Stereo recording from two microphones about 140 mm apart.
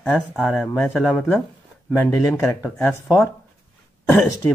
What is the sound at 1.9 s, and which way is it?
Speech, 20° left (ahead or behind).